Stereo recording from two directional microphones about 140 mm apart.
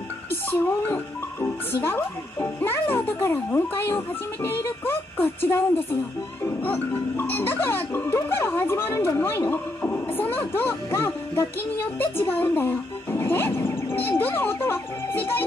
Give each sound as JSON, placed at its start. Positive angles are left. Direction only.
{"t": 0.3, "sound": "speech", "side_deg": 15}